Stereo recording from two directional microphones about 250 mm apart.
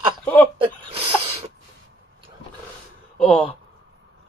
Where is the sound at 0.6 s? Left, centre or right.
Right.